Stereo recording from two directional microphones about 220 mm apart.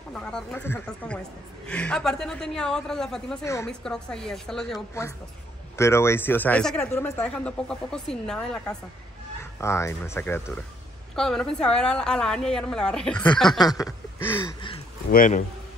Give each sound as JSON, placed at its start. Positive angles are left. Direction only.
{"t": 0.1, "sound": "a woman's voice", "side_deg": 5}
{"t": 4.7, "sound": "a woman's voice", "side_deg": 15}
{"t": 13.5, "sound": "speech", "side_deg": 15}
{"t": 15.0, "sound": "a man's voice", "side_deg": 40}